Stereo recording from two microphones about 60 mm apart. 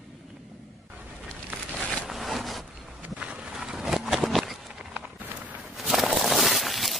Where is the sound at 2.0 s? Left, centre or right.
Centre.